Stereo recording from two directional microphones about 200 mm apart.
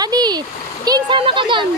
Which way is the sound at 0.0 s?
20° right (ahead or behind).